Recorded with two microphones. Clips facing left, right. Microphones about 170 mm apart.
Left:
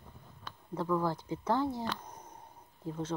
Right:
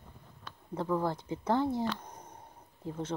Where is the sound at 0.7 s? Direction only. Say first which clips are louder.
Even; 25° right (ahead or behind).